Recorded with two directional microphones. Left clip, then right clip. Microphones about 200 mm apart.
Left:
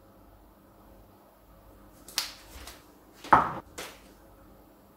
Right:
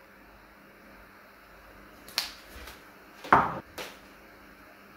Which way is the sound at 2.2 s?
5° right (ahead or behind).